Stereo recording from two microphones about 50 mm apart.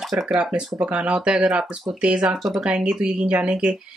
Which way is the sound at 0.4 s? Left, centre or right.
Centre.